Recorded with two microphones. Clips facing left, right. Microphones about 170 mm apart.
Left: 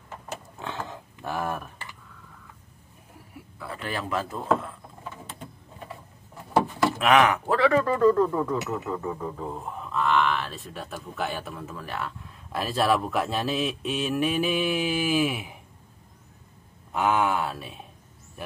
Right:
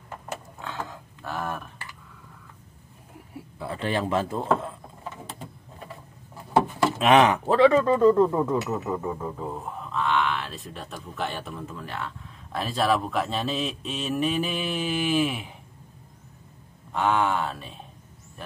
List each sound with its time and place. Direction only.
0.6 s a sound: 20° left (ahead or behind)
3.5 s speech: 25° right (ahead or behind)
7.0 s speech: 25° right (ahead or behind); by 15.5 s 5° left (ahead or behind)
16.9 s speech: 10° left (ahead or behind)